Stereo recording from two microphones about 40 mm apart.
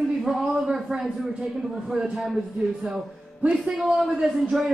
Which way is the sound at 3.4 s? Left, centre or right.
Centre.